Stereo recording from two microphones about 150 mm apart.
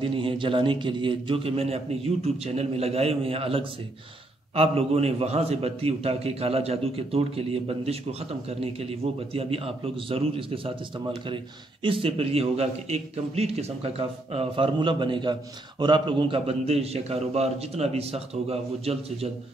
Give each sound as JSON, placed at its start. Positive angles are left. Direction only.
{"t": 0.0, "sound": "a man's voice", "side_deg": -35}